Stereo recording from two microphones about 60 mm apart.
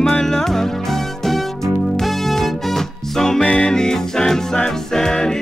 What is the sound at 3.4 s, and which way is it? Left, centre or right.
Music, centre.